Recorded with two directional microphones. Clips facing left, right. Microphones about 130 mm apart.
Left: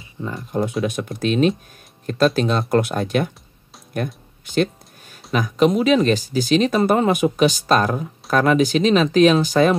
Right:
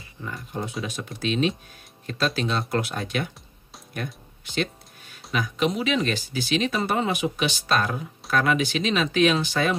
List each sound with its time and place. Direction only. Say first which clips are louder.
0.8 s speech: left 7 dB; 55° left (ahead or behind)